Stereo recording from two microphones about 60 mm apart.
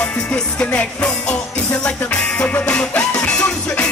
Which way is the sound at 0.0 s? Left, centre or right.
Left.